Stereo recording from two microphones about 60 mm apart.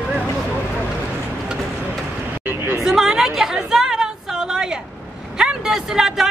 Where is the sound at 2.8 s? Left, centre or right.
Centre.